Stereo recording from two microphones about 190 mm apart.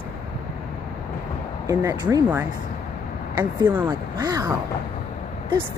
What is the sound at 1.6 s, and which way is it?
Speech, 20° right (ahead or behind).